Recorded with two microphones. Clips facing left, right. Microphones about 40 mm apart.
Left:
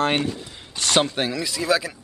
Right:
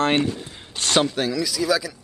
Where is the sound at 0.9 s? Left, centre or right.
Left.